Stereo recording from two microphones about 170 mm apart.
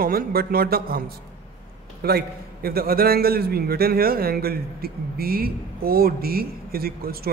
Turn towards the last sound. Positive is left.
turn(degrees=-60)  # may be behind; listen again after turning